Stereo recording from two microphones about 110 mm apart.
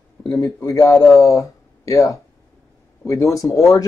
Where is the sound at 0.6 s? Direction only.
30° left (ahead or behind).